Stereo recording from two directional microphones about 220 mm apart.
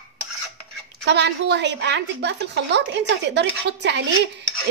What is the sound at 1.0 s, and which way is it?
A woman's voice, 50° right (ahead or behind).